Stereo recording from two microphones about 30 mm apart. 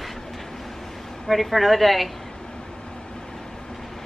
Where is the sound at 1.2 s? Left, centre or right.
Centre.